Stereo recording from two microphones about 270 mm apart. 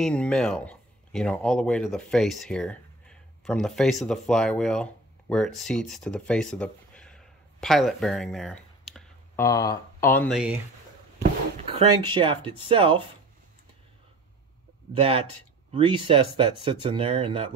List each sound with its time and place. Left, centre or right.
0.0 s speech: centre
11.7 s speech: centre
15.0 s speech: right